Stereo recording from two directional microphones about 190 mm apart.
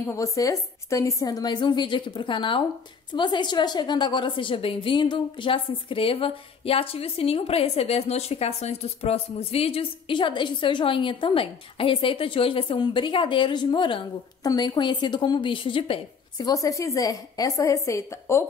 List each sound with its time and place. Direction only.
0.1 s a woman's voice: 15° left (ahead or behind)